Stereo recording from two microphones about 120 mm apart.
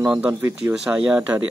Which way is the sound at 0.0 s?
15° right (ahead or behind).